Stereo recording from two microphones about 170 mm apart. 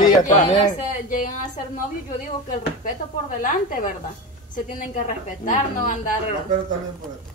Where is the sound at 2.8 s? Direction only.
50° left (ahead or behind).